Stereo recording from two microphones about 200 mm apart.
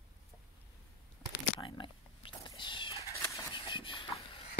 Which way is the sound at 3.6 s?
25° left (ahead or behind).